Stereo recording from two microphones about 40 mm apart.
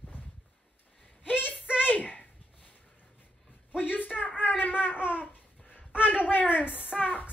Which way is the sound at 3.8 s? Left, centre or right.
Left.